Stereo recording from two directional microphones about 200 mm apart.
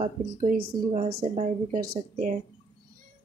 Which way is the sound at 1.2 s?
35° right (ahead or behind).